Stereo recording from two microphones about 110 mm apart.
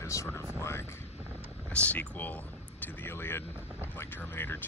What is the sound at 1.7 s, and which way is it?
Speech, 15° left (ahead or behind).